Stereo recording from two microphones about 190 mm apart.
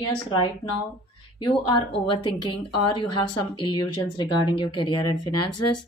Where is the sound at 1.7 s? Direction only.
25° left (ahead or behind).